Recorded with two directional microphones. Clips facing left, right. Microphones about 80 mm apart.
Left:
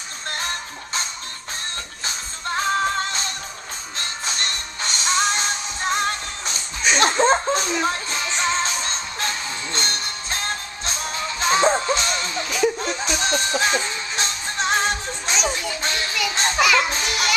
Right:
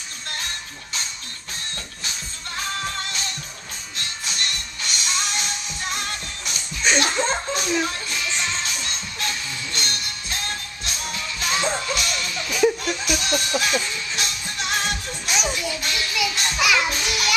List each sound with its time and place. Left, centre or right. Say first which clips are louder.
2.0 s music: left 8 dB; left
7.1 s laughter: left 6 dB; left
7.8 s music: left 3 dB; left
15.8 s child singing: left 2 dB; left
16.3 s children playing: left 4 dB; left
16.6 s music: left 1 dB; centre